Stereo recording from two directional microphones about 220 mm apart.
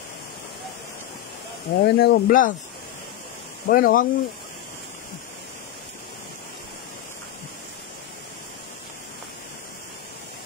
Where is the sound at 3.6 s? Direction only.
40° left (ahead or behind).